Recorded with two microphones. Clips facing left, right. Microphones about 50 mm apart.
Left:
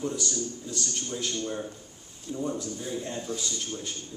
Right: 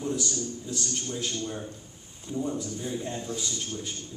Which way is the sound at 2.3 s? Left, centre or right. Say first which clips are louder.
Right 1 dB; centre.